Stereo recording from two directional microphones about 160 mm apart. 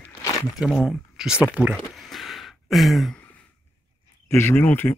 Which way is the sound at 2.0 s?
Centre (ahead or behind).